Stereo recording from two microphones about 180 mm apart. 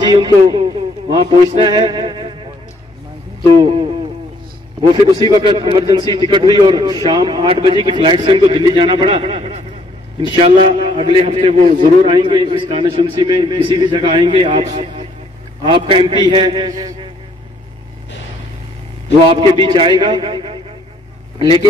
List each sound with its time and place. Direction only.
0.0 s a man's voice: 25° right (ahead or behind)
1.1 s music: 25° right (ahead or behind)
3.4 s a man's voice: 25° right (ahead or behind)
5.0 s a man's voice: 25° right (ahead or behind)
19.2 s a man's voice: 30° right (ahead or behind)